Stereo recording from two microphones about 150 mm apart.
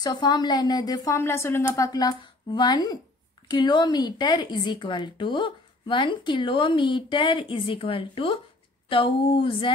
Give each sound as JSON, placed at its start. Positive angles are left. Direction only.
{"t": 0.0, "sound": "a woman's voice", "side_deg": 30}